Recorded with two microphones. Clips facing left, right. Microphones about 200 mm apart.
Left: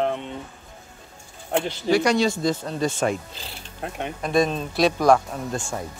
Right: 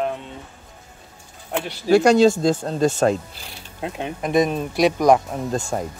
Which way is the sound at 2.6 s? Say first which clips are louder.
Right 5 dB; 40° right (ahead or behind).